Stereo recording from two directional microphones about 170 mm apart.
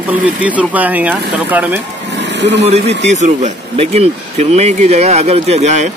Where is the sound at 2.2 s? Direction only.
90° right.